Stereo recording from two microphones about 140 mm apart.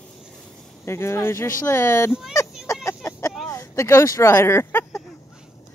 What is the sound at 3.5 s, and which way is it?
Speech, 20° left (ahead or behind).